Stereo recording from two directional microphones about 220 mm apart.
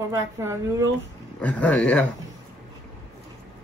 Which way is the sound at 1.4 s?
5° left (ahead or behind).